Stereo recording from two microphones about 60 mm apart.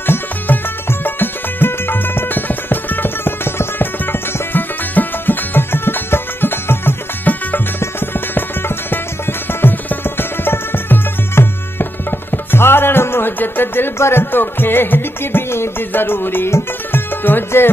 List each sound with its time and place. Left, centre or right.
0.0 s music: left